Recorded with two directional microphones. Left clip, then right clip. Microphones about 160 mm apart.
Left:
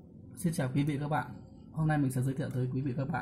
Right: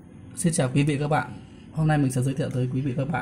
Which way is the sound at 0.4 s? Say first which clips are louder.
Right 9 dB; 25° right (ahead or behind).